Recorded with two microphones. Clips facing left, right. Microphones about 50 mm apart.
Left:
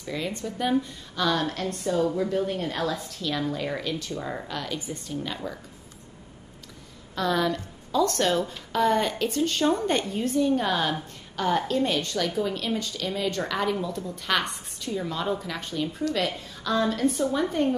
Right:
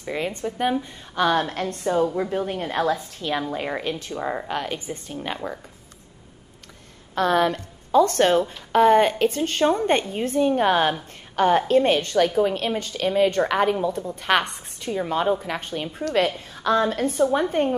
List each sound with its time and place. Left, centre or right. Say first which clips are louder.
0.0 s a woman's voice: right 4 dB; right
7.2 s a woman's voice: right 5 dB; right